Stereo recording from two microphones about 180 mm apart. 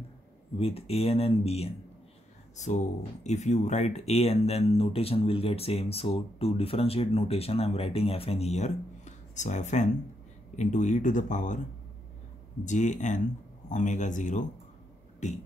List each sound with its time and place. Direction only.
0.6 s speech: 35° left (ahead or behind)
12.6 s speech: 40° left (ahead or behind)